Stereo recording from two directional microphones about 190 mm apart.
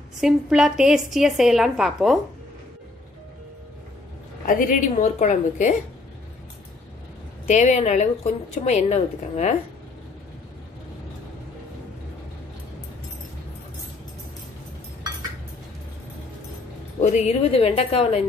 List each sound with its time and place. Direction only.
0.2 s a woman's voice: 5° right (ahead or behind)
4.5 s a woman's voice: 45° left (ahead or behind)
7.4 s a woman's voice: 35° left (ahead or behind)
17.0 s a woman's voice: 40° left (ahead or behind)